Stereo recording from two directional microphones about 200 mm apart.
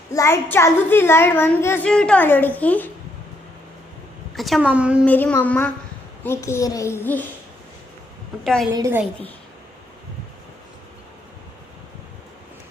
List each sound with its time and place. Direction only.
0.1 s a child's voice: 15° left (ahead or behind)
4.4 s a woman's voice: centre (ahead or behind)
5.0 s a child's voice: 10° left (ahead or behind)
8.7 s a woman's voice: 15° right (ahead or behind)